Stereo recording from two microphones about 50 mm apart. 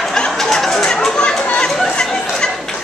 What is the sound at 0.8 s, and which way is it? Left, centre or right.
Chatter, centre.